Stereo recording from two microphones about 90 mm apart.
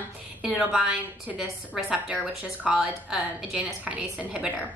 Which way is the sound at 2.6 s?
15° right (ahead or behind).